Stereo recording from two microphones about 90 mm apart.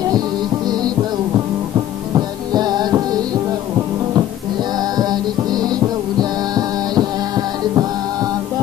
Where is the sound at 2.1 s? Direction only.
50° right (ahead or behind).